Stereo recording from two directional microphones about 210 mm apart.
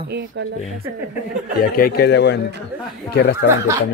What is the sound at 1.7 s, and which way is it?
A woman's voice, 45° left (ahead or behind).